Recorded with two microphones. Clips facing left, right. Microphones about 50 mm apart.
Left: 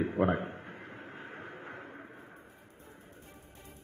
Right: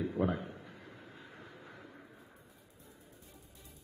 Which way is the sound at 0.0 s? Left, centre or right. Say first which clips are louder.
Left 5 dB; left.